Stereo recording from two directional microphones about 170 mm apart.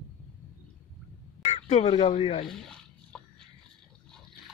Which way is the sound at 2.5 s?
5° left (ahead or behind).